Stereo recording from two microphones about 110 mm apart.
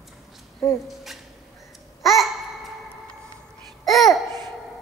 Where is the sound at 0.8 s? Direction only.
Centre (ahead or behind).